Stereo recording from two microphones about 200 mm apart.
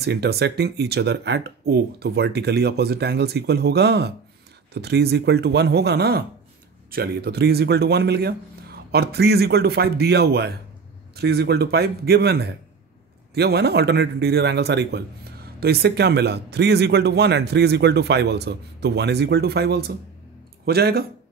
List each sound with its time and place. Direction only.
0.0 s speech: 55° right (ahead or behind)